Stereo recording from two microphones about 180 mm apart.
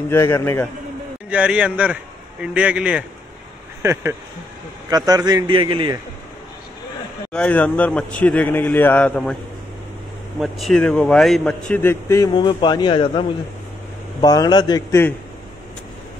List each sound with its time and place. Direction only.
0.1 s a man's voice: 15° left (ahead or behind)
1.3 s a man's voice: 5° right (ahead or behind); by 5.9 s 30° right (ahead or behind)
7.3 s a man's voice: 5° left (ahead or behind)
10.4 s a man's voice: centre (ahead or behind)
11.7 s a man's voice: 15° left (ahead or behind); by 13.2 s 30° left (ahead or behind)
14.2 s a man's voice: 20° left (ahead or behind)